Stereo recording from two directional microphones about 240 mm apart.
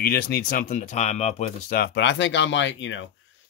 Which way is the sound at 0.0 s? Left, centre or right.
Left.